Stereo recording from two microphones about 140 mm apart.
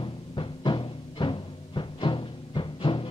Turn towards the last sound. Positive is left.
turn(degrees=35)  # may be behind; listen again after turning